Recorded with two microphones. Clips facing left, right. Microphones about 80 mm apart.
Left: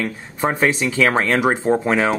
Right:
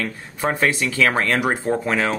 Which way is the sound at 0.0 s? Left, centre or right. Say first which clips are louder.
Left 2 dB; centre.